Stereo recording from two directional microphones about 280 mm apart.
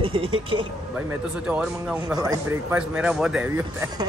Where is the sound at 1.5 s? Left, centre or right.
Centre.